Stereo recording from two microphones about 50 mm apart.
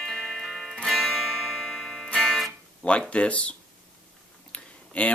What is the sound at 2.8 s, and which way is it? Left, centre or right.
Speech, left.